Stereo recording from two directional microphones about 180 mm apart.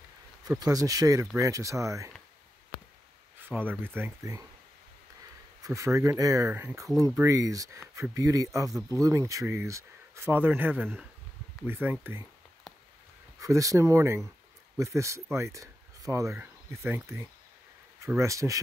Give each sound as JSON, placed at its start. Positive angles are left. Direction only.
{"t": 0.6, "sound": "speech", "side_deg": -20}
{"t": 3.3, "sound": "speech", "side_deg": -10}
{"t": 5.6, "sound": "speech", "side_deg": -15}
{"t": 13.4, "sound": "speech", "side_deg": -20}